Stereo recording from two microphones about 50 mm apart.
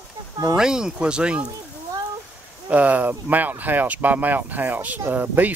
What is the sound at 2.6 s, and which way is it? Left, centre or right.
Speech, right.